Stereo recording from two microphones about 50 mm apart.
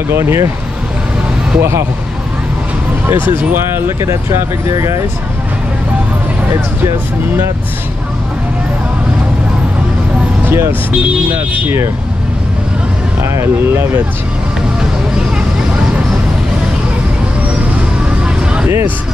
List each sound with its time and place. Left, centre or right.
0.1 s speech: right
1.6 s speech: right
3.1 s speech: right
4.0 s speech: right
10.4 s vehicle: right
13.2 s speech: right
14.8 s vehicle: centre
18.2 s a sound: centre